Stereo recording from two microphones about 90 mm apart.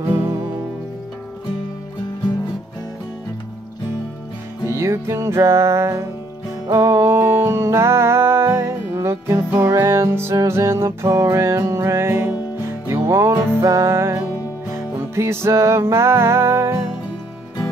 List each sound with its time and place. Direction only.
4.6 s music: 30° right (ahead or behind)